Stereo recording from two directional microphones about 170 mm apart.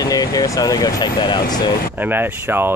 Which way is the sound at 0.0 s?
20° left (ahead or behind).